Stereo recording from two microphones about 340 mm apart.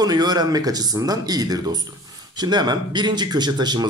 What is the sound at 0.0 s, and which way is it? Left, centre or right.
Speech, centre.